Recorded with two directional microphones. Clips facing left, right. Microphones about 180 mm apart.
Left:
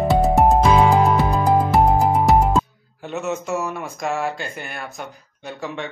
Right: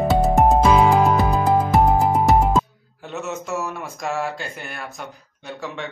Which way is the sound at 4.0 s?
Centre (ahead or behind).